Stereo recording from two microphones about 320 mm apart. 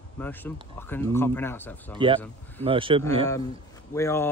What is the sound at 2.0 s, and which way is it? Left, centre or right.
Speech, centre.